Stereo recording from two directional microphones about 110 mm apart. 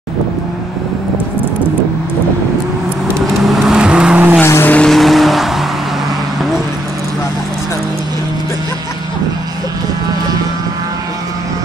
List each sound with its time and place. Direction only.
3.2 s vehicle: centre (ahead or behind)
4.4 s vehicle: 20° left (ahead or behind)
4.7 s vehicle: 5° left (ahead or behind)